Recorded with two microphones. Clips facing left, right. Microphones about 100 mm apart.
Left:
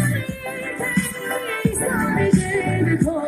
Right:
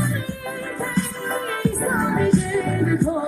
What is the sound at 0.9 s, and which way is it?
Music, 20° right (ahead or behind).